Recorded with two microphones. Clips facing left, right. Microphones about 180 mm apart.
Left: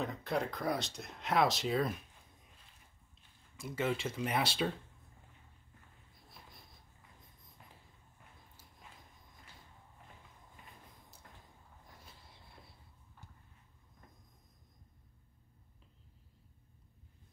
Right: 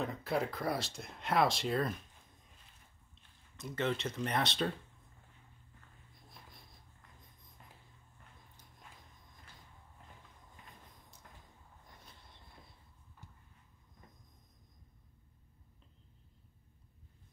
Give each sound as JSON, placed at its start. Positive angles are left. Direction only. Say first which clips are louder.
{"t": 0.0, "sound": "speech", "louder": "right 1 dB", "side_deg": 0}
{"t": 3.5, "sound": "speech", "louder": "even", "side_deg": 5}
{"t": 6.2, "sound": "a sound", "louder": "even", "side_deg": 0}